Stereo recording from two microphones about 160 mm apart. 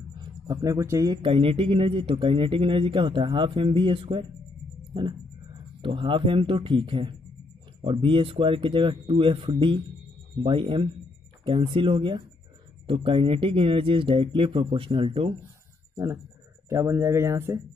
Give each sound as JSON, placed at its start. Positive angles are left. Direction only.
{"t": 0.5, "sound": "a man's voice", "side_deg": -20}
{"t": 5.8, "sound": "a man's voice", "side_deg": -30}
{"t": 16.6, "sound": "speech", "side_deg": -15}